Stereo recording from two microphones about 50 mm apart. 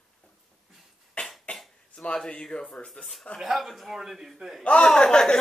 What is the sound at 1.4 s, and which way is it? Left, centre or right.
Throat clearing, left.